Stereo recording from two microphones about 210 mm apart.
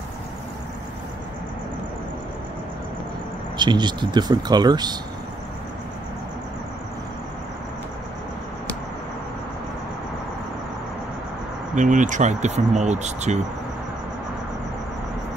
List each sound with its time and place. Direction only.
3.5 s speech: 20° right (ahead or behind)
11.7 s speech: 35° right (ahead or behind)